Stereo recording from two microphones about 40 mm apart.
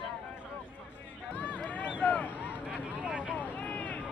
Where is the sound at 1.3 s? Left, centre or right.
Left.